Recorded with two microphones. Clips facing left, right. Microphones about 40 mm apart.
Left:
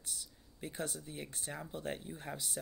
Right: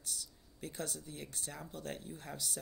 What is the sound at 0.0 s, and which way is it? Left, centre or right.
Speech, left.